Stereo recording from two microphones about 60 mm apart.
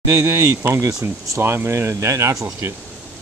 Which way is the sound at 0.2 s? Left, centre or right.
Right.